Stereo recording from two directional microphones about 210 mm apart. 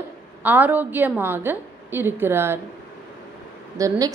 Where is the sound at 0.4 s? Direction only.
10° right (ahead or behind).